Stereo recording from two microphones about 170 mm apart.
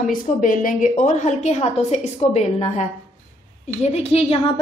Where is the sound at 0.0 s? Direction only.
50° left (ahead or behind).